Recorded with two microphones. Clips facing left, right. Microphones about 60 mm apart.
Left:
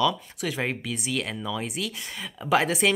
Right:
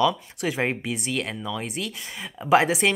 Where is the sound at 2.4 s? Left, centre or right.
Centre.